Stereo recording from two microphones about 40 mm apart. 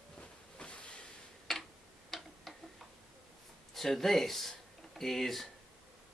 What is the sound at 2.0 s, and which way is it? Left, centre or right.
Tick-tock, centre.